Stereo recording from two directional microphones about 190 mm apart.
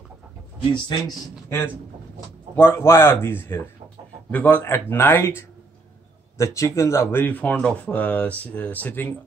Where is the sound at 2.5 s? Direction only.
10° left (ahead or behind).